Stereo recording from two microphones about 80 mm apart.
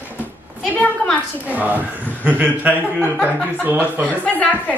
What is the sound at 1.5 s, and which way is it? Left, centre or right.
A woman's voice, right.